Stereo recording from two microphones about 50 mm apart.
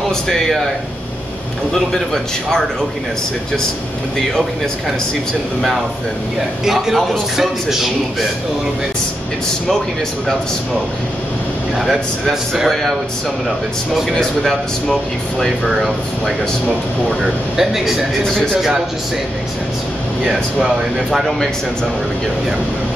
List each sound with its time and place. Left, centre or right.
0.1 s speech: centre
6.6 s a man's voice: centre
11.8 s speech: centre
14.4 s a man's voice: centre
21.1 s speech: centre